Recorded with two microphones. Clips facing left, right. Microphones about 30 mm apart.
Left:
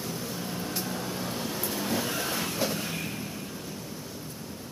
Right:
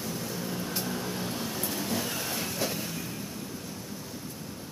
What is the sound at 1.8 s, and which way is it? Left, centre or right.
Vehicle, centre.